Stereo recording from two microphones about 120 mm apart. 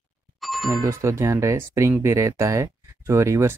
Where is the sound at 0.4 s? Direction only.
Centre (ahead or behind).